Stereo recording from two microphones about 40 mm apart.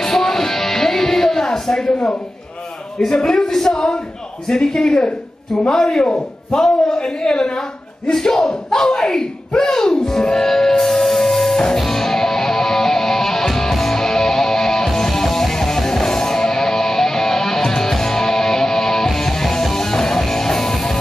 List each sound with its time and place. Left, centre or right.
0.0 s music: centre
3.0 s a man's voice: centre
11.8 s music: centre